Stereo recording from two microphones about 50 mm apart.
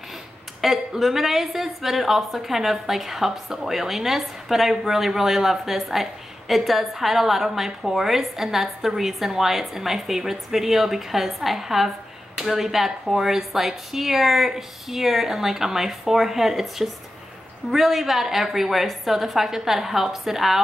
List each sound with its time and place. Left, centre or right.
0.6 s a woman's voice: centre